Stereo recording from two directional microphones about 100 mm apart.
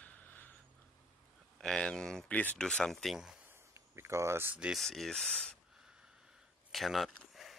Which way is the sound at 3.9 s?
30° right (ahead or behind).